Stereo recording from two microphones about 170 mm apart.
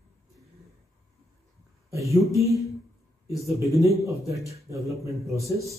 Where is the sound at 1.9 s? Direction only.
20° right (ahead or behind).